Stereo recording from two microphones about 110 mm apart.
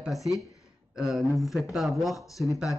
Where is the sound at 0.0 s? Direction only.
Centre (ahead or behind).